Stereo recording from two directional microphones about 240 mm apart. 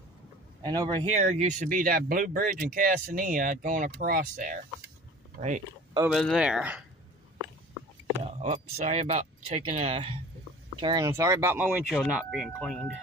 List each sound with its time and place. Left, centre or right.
0.7 s speech: centre
6.1 s speech: centre
8.2 s a sound: right
8.7 s speech: right; by 12.9 s centre